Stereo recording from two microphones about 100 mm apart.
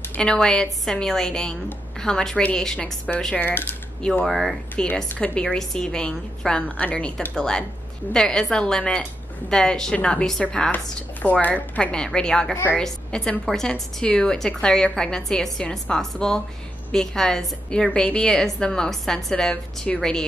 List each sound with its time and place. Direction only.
0.2 s a woman's voice: 10° left (ahead or behind)
3.3 s speech: 20° left (ahead or behind)
4.0 s a woman's voice: 5° left (ahead or behind)